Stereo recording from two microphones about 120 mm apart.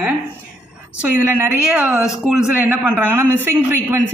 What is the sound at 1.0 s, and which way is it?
A man's voice, 15° right (ahead or behind).